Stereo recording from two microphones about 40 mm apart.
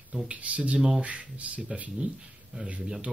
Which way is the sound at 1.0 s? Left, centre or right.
Right.